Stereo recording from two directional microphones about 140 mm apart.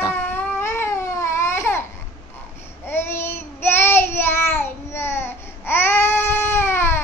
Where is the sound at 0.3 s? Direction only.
15° left (ahead or behind).